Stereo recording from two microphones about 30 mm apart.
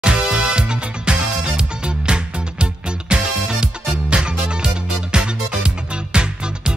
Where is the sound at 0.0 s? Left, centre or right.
Right.